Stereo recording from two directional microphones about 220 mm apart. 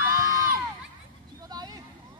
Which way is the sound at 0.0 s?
15° right (ahead or behind).